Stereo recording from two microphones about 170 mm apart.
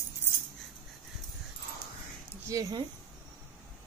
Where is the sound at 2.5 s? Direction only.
20° right (ahead or behind).